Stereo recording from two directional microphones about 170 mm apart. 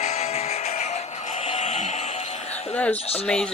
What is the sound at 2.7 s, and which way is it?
Speech, 10° left (ahead or behind).